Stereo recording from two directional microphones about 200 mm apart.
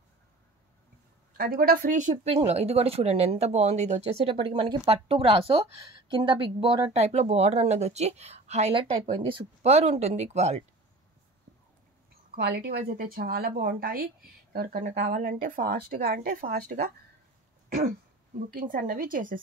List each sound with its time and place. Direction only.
1.3 s speech: 45° right (ahead or behind)
12.4 s speech: 55° right (ahead or behind)
18.5 s speech: 45° right (ahead or behind)